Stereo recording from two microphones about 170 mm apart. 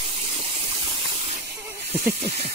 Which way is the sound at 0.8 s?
35° right (ahead or behind).